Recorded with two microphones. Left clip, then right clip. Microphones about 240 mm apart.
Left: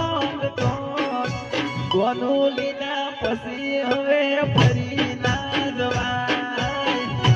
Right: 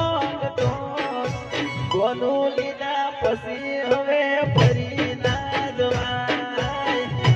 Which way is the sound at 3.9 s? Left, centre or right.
Left.